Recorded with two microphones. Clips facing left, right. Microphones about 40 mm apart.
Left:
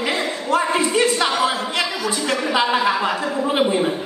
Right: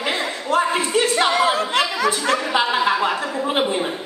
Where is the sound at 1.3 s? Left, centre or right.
Right.